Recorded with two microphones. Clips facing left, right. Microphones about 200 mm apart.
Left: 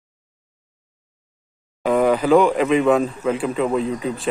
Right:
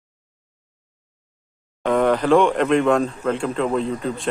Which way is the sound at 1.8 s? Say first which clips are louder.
Left 1 dB; 5° left (ahead or behind).